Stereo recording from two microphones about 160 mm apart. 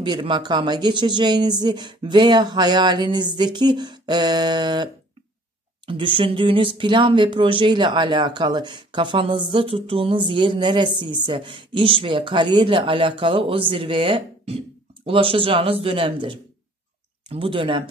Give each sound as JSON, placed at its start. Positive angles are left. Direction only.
{"t": 0.0, "sound": "speech", "side_deg": -30}
{"t": 5.9, "sound": "speech", "side_deg": -30}